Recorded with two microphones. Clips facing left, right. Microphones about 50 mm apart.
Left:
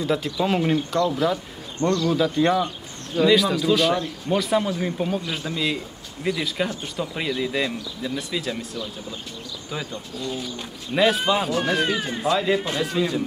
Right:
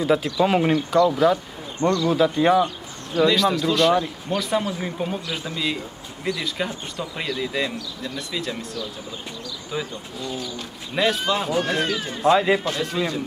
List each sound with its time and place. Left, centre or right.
0.0 s speech: centre
1.8 s speech: right
2.1 s speech: centre
3.2 s speech: centre
9.7 s speech: centre
11.0 s speech: centre
11.9 s speech: centre
12.3 s speech: centre
12.6 s speech: centre
12.9 s speech: centre